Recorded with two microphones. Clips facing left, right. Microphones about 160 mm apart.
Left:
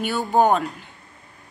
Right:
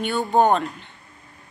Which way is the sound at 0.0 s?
5° left (ahead or behind).